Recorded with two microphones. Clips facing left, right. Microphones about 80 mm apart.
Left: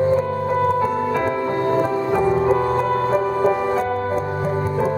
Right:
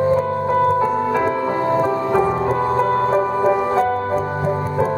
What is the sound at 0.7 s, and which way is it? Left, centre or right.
Music, centre.